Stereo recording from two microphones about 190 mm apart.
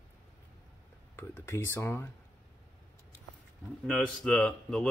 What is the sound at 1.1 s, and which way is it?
Speech, 15° left (ahead or behind).